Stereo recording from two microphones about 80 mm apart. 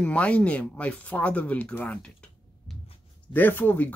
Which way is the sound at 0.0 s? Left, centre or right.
Centre.